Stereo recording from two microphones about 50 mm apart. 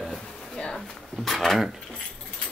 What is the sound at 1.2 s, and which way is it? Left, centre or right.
Speech, centre.